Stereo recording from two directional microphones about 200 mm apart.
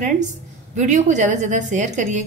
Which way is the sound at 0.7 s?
35° right (ahead or behind).